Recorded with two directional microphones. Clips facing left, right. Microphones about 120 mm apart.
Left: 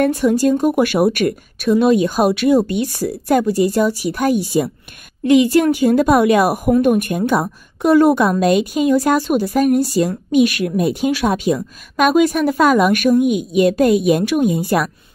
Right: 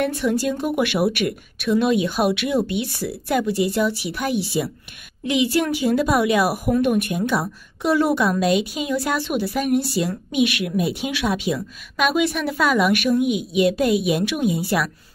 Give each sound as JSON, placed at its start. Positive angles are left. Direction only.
{"t": 0.0, "sound": "a woman's voice", "side_deg": 40}